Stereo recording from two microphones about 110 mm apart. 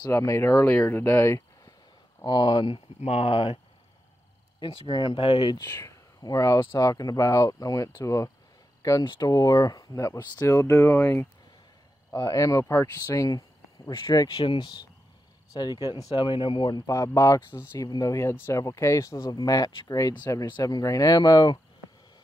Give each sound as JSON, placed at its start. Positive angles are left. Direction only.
{"t": 0.1, "sound": "speech", "side_deg": 25}
{"t": 2.2, "sound": "speech", "side_deg": 40}
{"t": 3.0, "sound": "speech", "side_deg": 65}
{"t": 4.6, "sound": "speech", "side_deg": 50}
{"t": 9.0, "sound": "speech", "side_deg": 40}
{"t": 14.4, "sound": "speech", "side_deg": 45}